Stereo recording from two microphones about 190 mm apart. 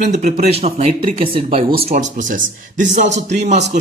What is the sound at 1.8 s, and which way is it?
Speech, 45° right (ahead or behind).